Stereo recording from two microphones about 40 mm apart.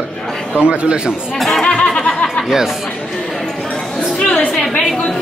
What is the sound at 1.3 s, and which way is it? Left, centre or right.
Speech, centre.